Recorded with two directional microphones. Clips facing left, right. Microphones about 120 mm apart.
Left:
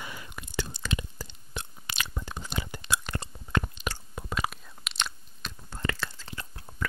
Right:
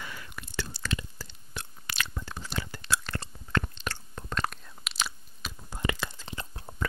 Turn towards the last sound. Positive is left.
turn(degrees=-25)  # may be behind; listen again after turning